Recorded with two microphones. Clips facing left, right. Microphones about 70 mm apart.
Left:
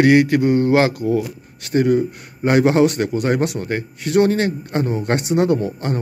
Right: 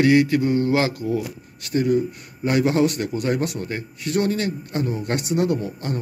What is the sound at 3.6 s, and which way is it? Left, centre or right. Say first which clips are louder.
Speech: left 5 dB; left.